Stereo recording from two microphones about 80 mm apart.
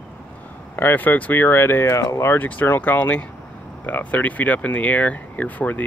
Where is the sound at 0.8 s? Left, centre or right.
Left.